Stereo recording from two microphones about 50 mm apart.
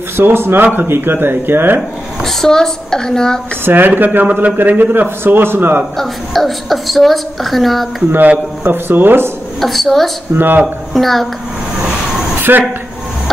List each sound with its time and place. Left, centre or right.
0.2 s a man's voice: right
2.2 s a woman's voice: centre
3.6 s a man's voice: right
5.9 s a woman's voice: centre
8.1 s a man's voice: right
9.6 s a woman's voice: centre
10.3 s a man's voice: right
10.9 s a woman's voice: centre
12.4 s a sound: right